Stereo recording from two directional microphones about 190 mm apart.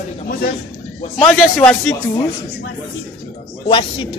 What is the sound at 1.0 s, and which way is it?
Speech, 35° left (ahead or behind).